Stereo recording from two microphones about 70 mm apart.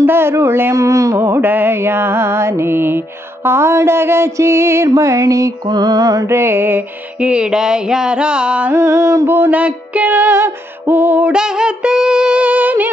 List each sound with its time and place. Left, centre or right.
0.0 s mantra: right
5.7 s music: right
6.2 s mantra: right
7.2 s a sound: centre
8.7 s mantra: right
9.6 s music: right
11.3 s music: centre